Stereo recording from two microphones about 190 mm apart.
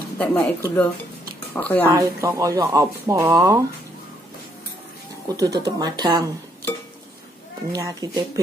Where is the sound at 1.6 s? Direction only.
5° left (ahead or behind).